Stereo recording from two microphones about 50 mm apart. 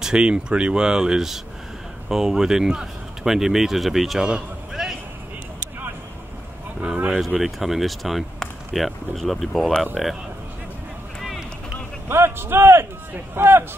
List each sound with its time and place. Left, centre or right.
0.0 s speech: centre
4.3 s run: centre
7.2 s speech: centre
12.1 s speech: right